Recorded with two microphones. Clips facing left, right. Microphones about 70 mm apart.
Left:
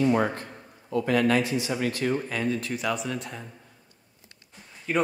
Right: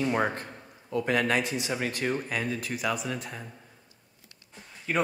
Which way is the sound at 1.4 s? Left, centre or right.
Left.